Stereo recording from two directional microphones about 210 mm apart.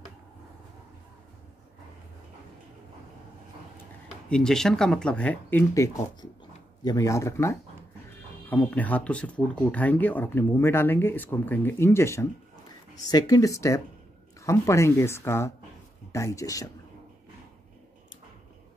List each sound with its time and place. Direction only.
4.3 s speech: 5° left (ahead or behind)